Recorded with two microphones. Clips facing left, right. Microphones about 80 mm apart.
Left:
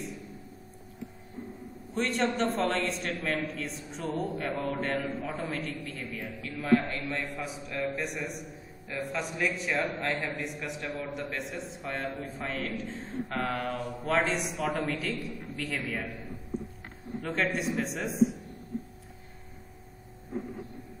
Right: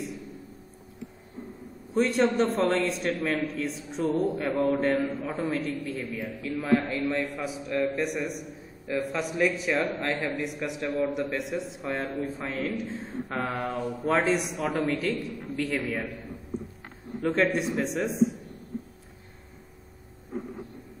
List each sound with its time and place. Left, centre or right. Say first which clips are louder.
2.0 s a man's voice: right 5 dB; centre
13.5 s mantra: right 2 dB; centre
14.0 s a man's voice: right 3 dB; centre
16.5 s a sound: right 1 dB; centre
17.2 s a man's voice: right 6 dB; centre